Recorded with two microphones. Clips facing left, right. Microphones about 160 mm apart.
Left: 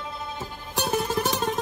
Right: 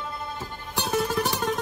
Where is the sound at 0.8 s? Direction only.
20° left (ahead or behind).